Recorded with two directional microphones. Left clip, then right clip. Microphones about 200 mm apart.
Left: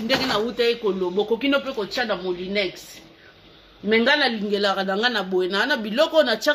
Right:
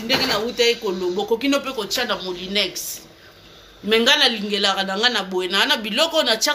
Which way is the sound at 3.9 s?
30° left (ahead or behind).